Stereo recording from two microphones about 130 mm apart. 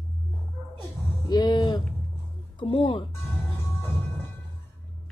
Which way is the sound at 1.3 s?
30° left (ahead or behind).